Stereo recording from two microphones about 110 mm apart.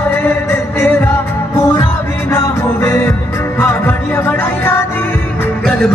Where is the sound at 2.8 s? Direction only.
20° left (ahead or behind).